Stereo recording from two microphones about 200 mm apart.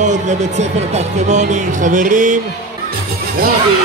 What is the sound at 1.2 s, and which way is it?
Music, 40° right (ahead or behind).